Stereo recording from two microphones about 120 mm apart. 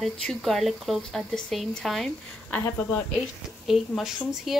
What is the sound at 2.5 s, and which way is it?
Speech, 15° left (ahead or behind).